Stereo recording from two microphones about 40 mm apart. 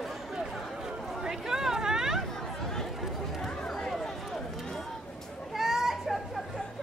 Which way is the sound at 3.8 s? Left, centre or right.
Centre.